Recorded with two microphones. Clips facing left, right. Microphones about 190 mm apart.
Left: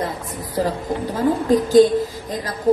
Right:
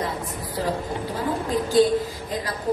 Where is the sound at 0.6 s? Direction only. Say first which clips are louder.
Left 5 dB; 45° left (ahead or behind).